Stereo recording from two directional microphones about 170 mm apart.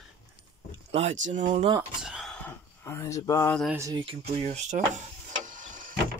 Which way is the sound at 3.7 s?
20° right (ahead or behind).